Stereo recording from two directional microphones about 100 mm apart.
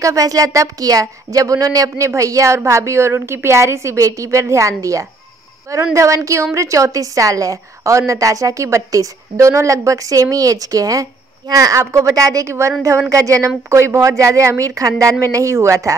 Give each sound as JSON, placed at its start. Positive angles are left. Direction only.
{"t": 0.0, "sound": "speech", "side_deg": -35}